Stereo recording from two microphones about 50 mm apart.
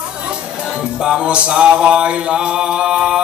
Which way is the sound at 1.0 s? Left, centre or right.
Centre.